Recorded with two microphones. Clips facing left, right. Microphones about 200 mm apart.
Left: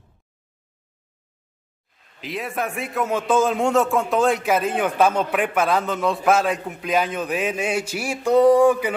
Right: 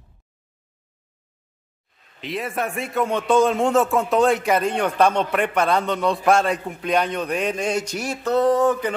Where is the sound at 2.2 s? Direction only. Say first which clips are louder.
Right 1 dB; centre (ahead or behind).